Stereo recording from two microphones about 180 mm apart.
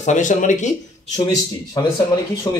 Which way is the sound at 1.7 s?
20° left (ahead or behind).